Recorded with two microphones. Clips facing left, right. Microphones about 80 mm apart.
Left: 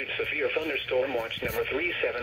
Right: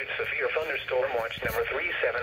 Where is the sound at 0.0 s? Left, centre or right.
Right.